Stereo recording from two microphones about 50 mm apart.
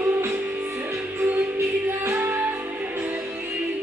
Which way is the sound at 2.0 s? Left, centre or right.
Right.